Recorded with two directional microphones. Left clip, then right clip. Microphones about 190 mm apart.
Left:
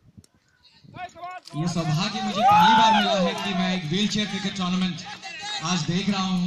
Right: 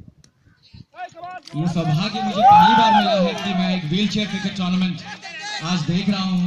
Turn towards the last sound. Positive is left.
turn(degrees=-45)  # may be behind; listen again after turning